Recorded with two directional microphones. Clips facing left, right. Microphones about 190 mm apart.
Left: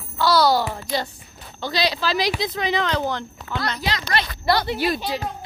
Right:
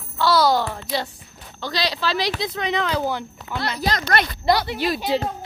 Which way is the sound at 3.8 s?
45° right (ahead or behind).